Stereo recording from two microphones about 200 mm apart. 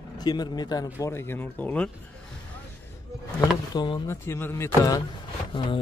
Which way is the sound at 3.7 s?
25° left (ahead or behind).